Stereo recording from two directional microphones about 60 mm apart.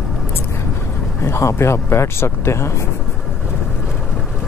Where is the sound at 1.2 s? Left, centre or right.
Left.